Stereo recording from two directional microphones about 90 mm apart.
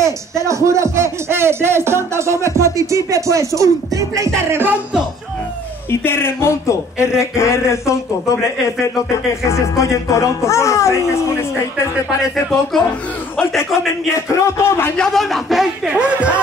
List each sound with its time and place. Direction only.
0.5 s speech: 35° right (ahead or behind)
2.4 s music: 35° right (ahead or behind)
4.5 s speech: 25° right (ahead or behind)
5.9 s speech: 25° left (ahead or behind)
9.5 s speech: 35° left (ahead or behind)
12.7 s a man's voice: centre (ahead or behind)
14.3 s speech: 30° left (ahead or behind)
15.0 s a man's voice: centre (ahead or behind)
15.9 s speech: 15° right (ahead or behind)